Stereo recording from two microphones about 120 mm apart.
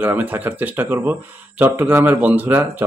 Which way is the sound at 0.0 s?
15° right (ahead or behind).